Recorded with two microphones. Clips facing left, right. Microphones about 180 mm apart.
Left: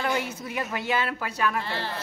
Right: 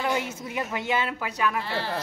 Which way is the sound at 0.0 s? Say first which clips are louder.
Even; 20° right (ahead or behind).